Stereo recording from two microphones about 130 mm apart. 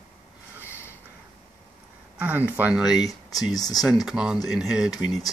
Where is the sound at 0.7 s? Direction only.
20° left (ahead or behind).